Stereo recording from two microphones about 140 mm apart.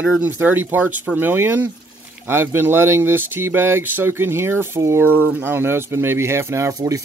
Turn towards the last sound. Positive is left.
turn(degrees=-20)  # may be behind; listen again after turning